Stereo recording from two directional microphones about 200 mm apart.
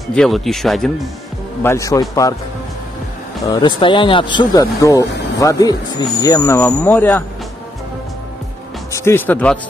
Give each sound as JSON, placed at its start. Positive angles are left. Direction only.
{"t": 0.1, "sound": "speech", "side_deg": 0}
{"t": 1.6, "sound": "speech", "side_deg": 15}
{"t": 3.4, "sound": "speech", "side_deg": 20}
{"t": 8.9, "sound": "speech", "side_deg": 10}